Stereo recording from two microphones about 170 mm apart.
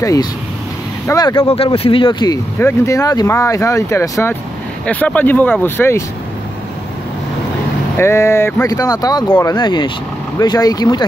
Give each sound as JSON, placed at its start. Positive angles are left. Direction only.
{"t": 0.0, "sound": "speech", "side_deg": 20}
{"t": 1.5, "sound": "speech", "side_deg": 35}
{"t": 8.0, "sound": "speech", "side_deg": 15}